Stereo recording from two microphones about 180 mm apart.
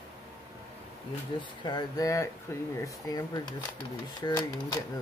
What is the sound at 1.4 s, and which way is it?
Speech, 25° left (ahead or behind).